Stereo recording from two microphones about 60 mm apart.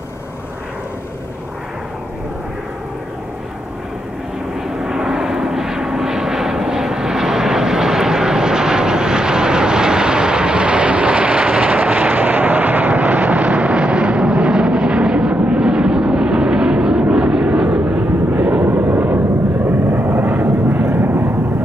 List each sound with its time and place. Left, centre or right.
4.6 s vehicle: centre
18.6 s vehicle: right